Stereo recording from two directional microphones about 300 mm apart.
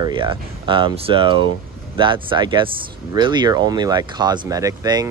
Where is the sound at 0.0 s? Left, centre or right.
Centre.